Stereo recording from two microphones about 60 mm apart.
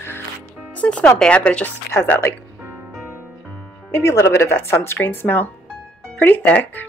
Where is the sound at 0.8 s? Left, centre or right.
Left.